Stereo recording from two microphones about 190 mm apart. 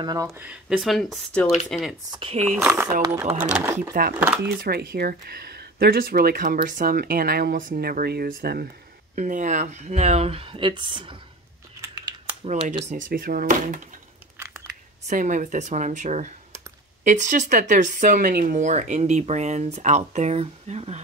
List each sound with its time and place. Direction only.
0.0 s speech: 20° right (ahead or behind); by 2.0 s centre (ahead or behind)
2.0 s speech: 25° right (ahead or behind)
2.5 s speech: 10° right (ahead or behind)
4.6 s speech: 55° right (ahead or behind)
9.1 s speech: 40° right (ahead or behind); by 11.1 s 25° right (ahead or behind)
12.4 s speech: 35° right (ahead or behind)
14.4 s a sound: 15° right (ahead or behind)
15.0 s speech: 40° right (ahead or behind)